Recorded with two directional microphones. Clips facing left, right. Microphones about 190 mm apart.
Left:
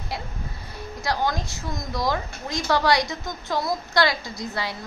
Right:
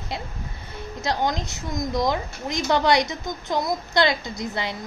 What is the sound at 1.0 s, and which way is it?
A woman's voice, 20° right (ahead or behind).